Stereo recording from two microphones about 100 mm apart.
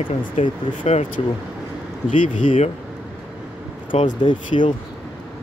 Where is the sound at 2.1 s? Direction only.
90° left.